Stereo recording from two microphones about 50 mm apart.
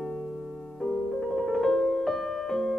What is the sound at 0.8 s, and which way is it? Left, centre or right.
Piano, centre.